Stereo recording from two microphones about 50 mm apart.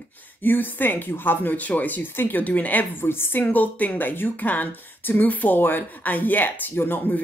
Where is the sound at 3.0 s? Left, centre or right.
Left.